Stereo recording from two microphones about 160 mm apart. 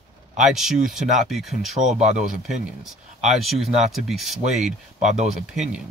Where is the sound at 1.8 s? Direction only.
45° right (ahead or behind).